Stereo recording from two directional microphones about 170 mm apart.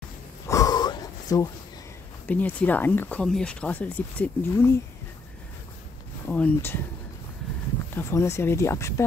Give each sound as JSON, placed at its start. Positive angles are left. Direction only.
{"t": 0.5, "sound": "a sound", "side_deg": 20}
{"t": 2.2, "sound": "speech", "side_deg": 10}
{"t": 6.2, "sound": "speech", "side_deg": 10}
{"t": 7.9, "sound": "speech", "side_deg": 15}